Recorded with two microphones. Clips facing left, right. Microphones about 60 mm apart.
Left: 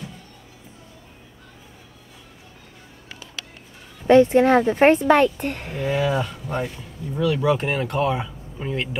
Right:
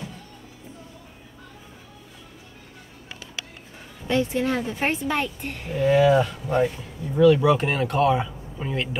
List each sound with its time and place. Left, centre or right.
4.1 s speech: left
5.8 s speech: centre